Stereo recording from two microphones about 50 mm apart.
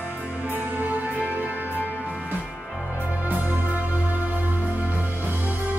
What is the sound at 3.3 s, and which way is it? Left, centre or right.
Music, right.